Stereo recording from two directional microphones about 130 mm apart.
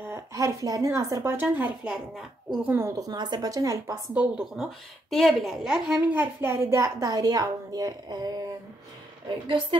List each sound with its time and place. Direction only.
0.0 s a woman's voice: 20° right (ahead or behind)
2.1 s a woman's voice: 5° right (ahead or behind)
3.0 s a woman's voice: 30° right (ahead or behind)